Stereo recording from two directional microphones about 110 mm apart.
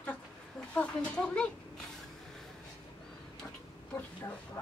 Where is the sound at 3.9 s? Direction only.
15° left (ahead or behind).